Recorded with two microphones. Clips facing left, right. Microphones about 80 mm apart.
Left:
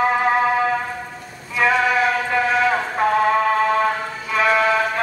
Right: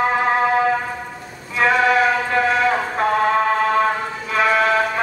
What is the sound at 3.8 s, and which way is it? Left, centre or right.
Clip-clop, centre.